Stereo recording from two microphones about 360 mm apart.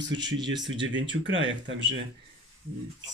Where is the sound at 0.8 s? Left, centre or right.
Right.